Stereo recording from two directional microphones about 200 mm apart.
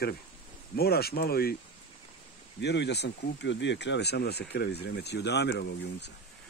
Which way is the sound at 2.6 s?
60° left (ahead or behind).